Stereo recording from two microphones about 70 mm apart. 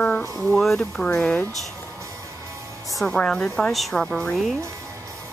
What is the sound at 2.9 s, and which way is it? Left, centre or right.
Speech, centre.